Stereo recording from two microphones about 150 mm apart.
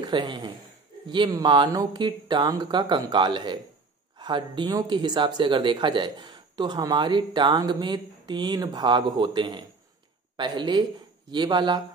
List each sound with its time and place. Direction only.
0.0 s speech: 30° right (ahead or behind)